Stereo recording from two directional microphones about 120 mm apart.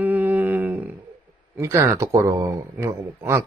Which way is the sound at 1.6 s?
20° right (ahead or behind).